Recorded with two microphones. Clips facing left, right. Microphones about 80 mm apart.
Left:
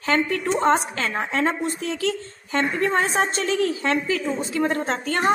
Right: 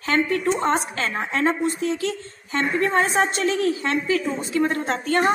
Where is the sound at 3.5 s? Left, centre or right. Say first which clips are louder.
Right 1 dB; right.